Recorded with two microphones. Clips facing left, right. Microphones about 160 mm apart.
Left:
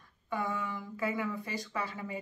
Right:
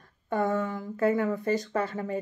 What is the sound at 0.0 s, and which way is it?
Speech, 50° right (ahead or behind).